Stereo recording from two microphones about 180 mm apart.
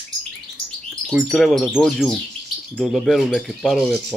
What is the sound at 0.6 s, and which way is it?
Chirp, centre (ahead or behind).